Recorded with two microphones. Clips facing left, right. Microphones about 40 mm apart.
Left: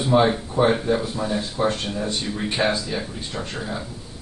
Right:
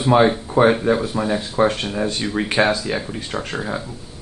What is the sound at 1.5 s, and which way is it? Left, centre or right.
Speech, right.